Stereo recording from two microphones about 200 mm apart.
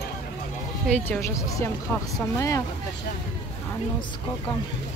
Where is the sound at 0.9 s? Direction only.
10° left (ahead or behind).